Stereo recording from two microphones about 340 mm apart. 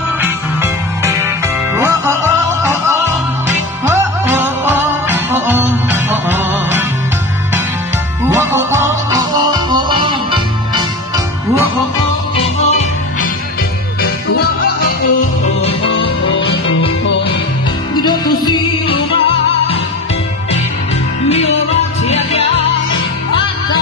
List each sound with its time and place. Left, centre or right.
1.8 s music: centre
8.3 s music: centre
12.6 s music: centre
18.0 s music: centre
22.0 s music: centre